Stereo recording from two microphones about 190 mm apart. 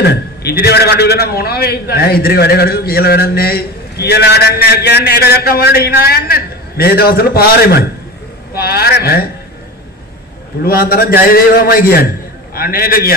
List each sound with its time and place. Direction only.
0.0 s a man's voice: 55° left (ahead or behind)
10.6 s a man's voice: 50° left (ahead or behind)